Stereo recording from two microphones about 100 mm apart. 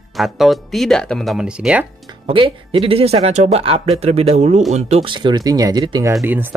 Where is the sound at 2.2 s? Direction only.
70° right (ahead or behind); by 5.1 s 90° right.